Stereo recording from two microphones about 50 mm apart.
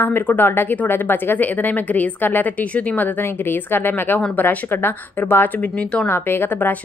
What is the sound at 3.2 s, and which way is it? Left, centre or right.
A woman's voice, left.